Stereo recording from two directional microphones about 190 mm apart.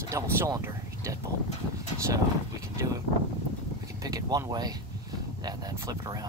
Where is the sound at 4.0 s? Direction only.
20° right (ahead or behind).